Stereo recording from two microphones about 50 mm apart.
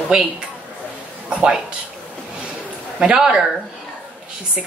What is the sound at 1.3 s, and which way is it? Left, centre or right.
Speech, right.